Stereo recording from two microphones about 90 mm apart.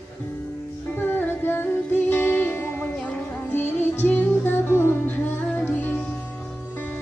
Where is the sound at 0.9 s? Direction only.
20° left (ahead or behind).